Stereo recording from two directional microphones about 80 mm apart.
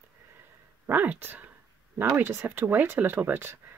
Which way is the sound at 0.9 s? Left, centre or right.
Right.